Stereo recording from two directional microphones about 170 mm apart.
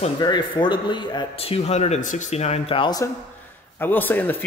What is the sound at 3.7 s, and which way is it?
Speech, 10° left (ahead or behind).